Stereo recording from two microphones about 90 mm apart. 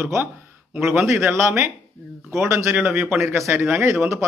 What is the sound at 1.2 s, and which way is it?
Speech, 30° right (ahead or behind).